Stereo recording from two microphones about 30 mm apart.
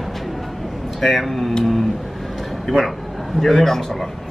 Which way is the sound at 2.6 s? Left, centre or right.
Centre.